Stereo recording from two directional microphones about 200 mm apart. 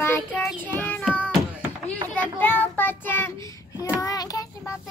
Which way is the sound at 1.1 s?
10° left (ahead or behind).